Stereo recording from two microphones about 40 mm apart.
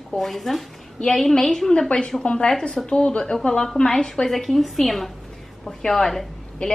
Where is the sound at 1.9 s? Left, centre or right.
Left.